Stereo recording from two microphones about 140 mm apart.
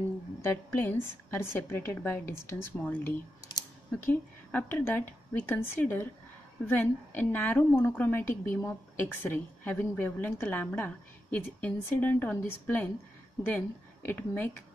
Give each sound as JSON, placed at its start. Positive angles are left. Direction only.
{"t": 0.4, "sound": "a woman's voice", "side_deg": 15}